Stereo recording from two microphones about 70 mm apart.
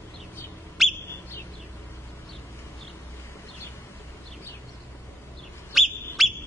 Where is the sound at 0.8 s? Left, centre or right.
Centre.